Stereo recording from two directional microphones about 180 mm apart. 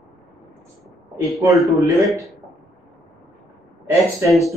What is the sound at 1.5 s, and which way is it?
Speech, centre (ahead or behind).